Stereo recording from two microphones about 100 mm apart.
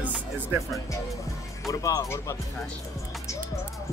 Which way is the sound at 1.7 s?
35° left (ahead or behind).